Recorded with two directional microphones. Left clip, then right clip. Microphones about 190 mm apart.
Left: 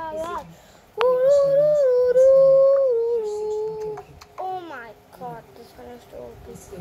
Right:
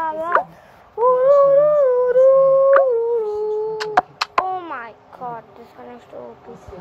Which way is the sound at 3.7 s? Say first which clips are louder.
Right 13 dB; 80° right.